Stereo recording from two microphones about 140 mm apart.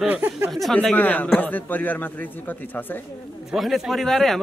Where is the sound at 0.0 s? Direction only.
10° right (ahead or behind).